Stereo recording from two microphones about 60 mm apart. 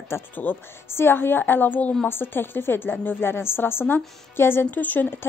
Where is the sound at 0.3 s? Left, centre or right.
Left.